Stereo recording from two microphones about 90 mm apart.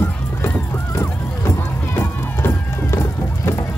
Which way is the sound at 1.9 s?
25° left (ahead or behind).